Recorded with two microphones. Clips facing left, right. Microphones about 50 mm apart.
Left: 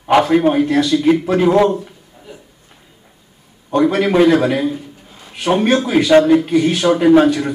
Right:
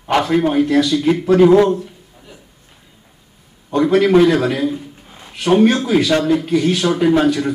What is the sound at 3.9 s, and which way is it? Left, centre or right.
Speech, centre.